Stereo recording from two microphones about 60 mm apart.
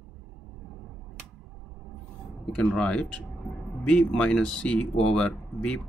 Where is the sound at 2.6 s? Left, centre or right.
Centre.